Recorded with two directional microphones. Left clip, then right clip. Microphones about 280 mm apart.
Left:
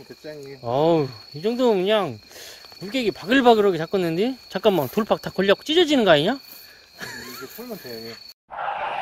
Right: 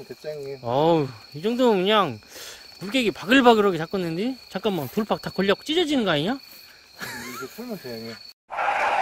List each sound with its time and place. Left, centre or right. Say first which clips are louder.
0.7 s speech: left 1 dB; centre
7.0 s music: right 1 dB; centre
8.5 s a sound: right 4 dB; right